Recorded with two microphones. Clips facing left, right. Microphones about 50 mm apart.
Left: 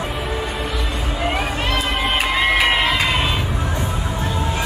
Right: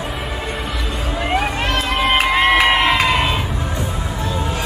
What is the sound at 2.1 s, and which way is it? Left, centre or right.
Crowd, centre.